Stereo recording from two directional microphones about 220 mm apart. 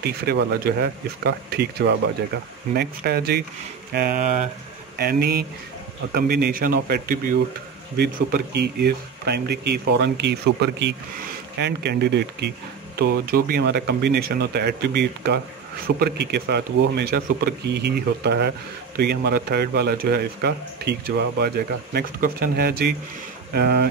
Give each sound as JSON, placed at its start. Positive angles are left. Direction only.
{"t": 0.0, "sound": "speech", "side_deg": -45}
{"t": 4.9, "sound": "speech", "side_deg": -45}